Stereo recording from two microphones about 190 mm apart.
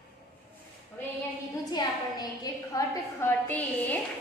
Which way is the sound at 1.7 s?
20° left (ahead or behind).